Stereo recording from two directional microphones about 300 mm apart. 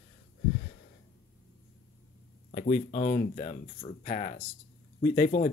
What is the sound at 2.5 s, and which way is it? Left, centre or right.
Speech, left.